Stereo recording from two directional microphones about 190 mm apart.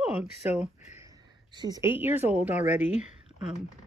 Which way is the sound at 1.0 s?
20° right (ahead or behind).